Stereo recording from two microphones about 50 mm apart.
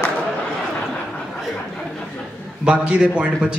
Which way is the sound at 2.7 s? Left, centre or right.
Right.